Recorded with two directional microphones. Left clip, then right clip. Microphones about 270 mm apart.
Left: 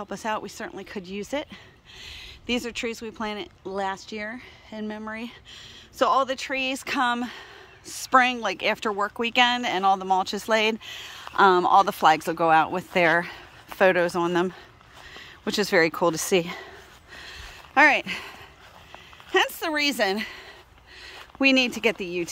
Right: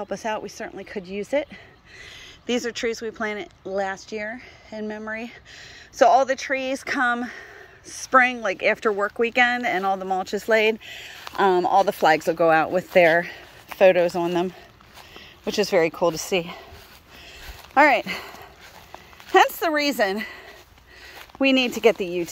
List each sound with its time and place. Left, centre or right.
0.0 s speech: centre
11.3 s speech: left
12.2 s speech: centre
15.4 s speech: left
16.3 s speech: centre
17.7 s speech: centre